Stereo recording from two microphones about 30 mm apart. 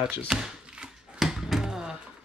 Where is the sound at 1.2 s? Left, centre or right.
Centre.